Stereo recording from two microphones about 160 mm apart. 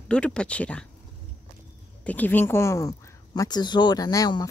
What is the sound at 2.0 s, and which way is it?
Speech, 10° left (ahead or behind).